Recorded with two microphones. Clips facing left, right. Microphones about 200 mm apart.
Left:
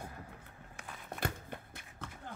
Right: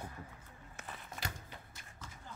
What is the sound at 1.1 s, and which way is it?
Walk, 55° left (ahead or behind).